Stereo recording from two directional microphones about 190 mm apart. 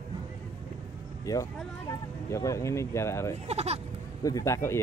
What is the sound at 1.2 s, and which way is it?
A woman's voice, 20° left (ahead or behind).